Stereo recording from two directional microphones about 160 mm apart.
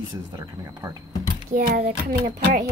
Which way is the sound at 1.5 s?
65° right (ahead or behind).